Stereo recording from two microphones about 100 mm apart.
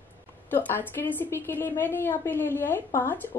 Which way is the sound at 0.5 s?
20° left (ahead or behind).